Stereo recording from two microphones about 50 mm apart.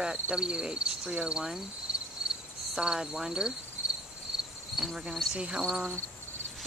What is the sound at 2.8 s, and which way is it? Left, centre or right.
Speech, centre.